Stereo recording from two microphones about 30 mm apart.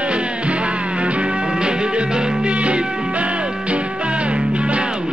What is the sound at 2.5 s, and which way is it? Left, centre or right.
Music, right.